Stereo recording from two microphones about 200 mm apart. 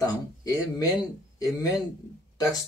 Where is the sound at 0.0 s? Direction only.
15° left (ahead or behind).